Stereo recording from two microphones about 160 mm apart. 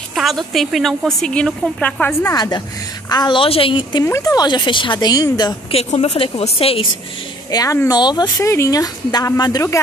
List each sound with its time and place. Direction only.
0.1 s a woman's voice: centre (ahead or behind)
2.3 s a woman's voice: 25° left (ahead or behind)
4.0 s speech: 20° left (ahead or behind)
5.7 s a woman's voice: 40° left (ahead or behind)
7.5 s speech: 20° left (ahead or behind)